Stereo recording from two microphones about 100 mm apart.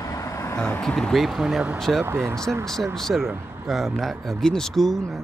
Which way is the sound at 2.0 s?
25° right (ahead or behind).